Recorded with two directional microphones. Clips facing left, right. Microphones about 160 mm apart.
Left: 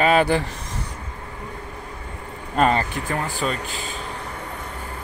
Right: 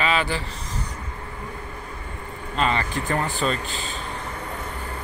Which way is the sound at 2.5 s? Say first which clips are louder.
Left 5 dB; 50° left (ahead or behind).